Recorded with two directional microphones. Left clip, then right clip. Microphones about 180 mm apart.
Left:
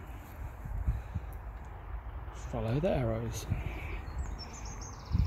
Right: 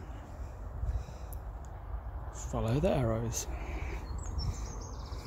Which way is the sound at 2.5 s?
5° right (ahead or behind).